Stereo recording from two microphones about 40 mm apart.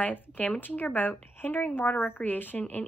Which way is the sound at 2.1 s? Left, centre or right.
Left.